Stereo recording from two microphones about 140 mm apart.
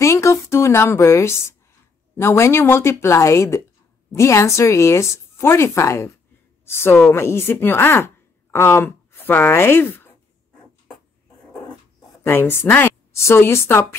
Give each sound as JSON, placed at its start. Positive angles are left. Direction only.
{"t": 0.0, "sound": "a sound", "side_deg": 20}
{"t": 2.1, "sound": "a woman's voice", "side_deg": 20}
{"t": 12.2, "sound": "a woman's voice", "side_deg": 15}